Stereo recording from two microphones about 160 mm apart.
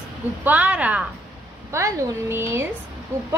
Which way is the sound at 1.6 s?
20° right (ahead or behind).